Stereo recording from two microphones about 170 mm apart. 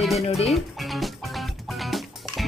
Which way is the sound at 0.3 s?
Centre (ahead or behind).